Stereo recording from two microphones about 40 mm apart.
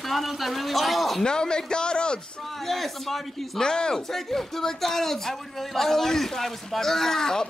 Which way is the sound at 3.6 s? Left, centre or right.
Centre.